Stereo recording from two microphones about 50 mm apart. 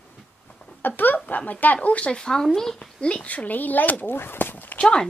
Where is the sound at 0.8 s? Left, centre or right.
Left.